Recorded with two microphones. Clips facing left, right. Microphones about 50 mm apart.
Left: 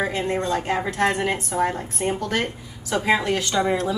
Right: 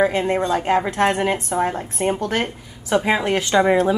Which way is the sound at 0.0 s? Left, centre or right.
Centre.